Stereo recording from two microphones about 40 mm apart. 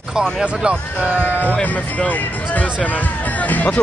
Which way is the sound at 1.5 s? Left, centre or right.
Left.